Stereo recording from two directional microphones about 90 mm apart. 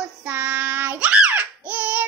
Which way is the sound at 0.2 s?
20° right (ahead or behind).